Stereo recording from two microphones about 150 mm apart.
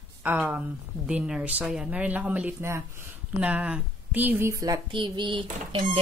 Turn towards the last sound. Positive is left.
turn(degrees=-35)  # may be behind; listen again after turning